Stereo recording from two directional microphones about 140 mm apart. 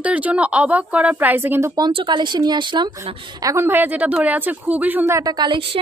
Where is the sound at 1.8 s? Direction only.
30° right (ahead or behind).